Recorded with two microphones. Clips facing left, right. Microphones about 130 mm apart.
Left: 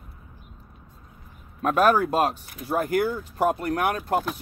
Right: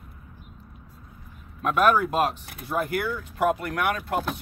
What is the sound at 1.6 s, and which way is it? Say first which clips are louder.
Speech: left 1 dB; 35° left (ahead or behind).